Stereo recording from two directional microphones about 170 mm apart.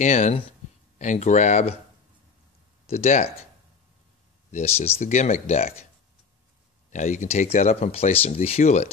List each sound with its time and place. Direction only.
0.0 s speech: 40° left (ahead or behind)
2.9 s speech: 40° left (ahead or behind)
4.5 s speech: 40° left (ahead or behind)
6.9 s speech: 45° left (ahead or behind)